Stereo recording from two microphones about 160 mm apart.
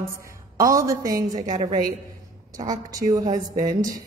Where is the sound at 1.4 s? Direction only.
50° right (ahead or behind).